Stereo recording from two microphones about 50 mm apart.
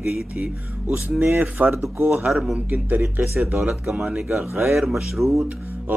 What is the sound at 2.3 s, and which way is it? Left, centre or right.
Speech, centre.